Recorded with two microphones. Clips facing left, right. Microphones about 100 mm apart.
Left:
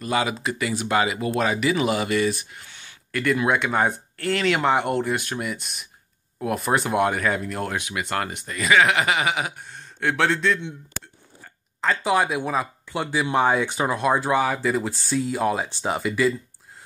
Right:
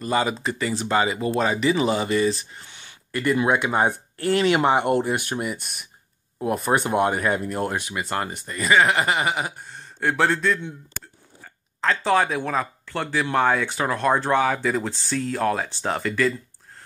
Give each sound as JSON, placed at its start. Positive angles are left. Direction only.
{"t": 0.0, "sound": "speech", "side_deg": 0}
{"t": 11.8, "sound": "speech", "side_deg": 10}